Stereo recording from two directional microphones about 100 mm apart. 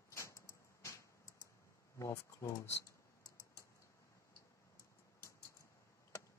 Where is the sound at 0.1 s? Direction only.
30° left (ahead or behind).